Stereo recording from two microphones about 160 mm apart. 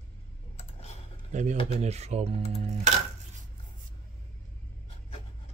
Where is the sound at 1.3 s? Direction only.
45° right (ahead or behind).